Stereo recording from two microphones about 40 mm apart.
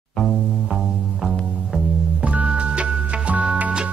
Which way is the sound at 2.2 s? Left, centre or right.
Right.